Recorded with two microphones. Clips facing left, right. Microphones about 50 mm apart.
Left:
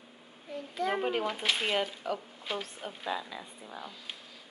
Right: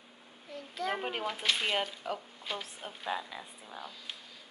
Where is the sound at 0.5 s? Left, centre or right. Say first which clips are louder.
Left 3 dB; centre.